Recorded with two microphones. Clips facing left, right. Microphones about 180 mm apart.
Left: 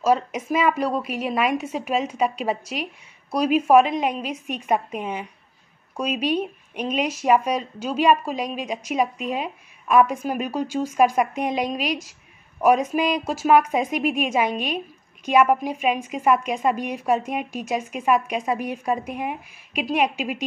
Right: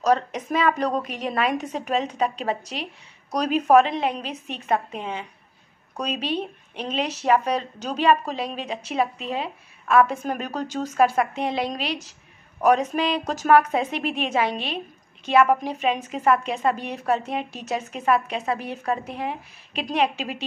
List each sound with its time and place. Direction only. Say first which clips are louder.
0.0 s speech: left 1 dB; 10° left (ahead or behind)